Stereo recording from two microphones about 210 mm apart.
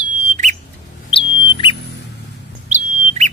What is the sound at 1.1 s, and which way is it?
Bird, 25° left (ahead or behind).